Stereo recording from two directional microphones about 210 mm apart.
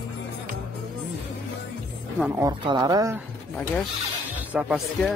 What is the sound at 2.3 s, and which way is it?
Speech, 20° right (ahead or behind).